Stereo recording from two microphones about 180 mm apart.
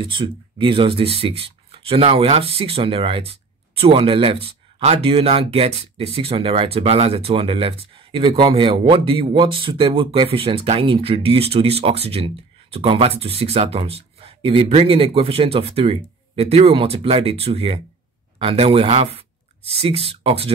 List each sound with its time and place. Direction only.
0.0 s speech: 30° right (ahead or behind)